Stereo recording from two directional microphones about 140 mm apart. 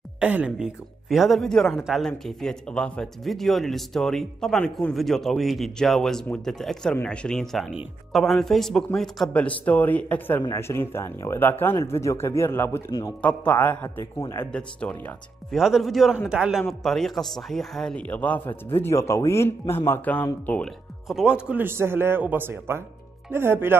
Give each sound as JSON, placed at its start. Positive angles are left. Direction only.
{"t": 0.2, "sound": "speech", "side_deg": -10}
{"t": 13.2, "sound": "speech", "side_deg": 10}
{"t": 14.5, "sound": "speech", "side_deg": 10}
{"t": 21.1, "sound": "a man's voice", "side_deg": -5}